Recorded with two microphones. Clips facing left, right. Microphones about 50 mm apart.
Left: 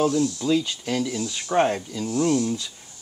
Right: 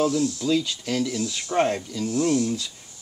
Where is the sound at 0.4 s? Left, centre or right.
Centre.